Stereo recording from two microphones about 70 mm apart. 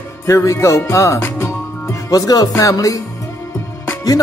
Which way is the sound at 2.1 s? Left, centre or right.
Left.